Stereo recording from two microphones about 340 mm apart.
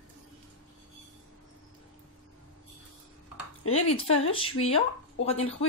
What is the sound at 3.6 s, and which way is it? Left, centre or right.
Speech, left.